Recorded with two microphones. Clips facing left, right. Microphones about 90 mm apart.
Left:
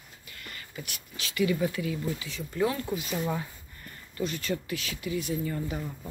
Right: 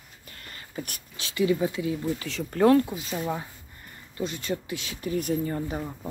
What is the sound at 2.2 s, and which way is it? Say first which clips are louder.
Speech: right 9 dB; 65° right (ahead or behind).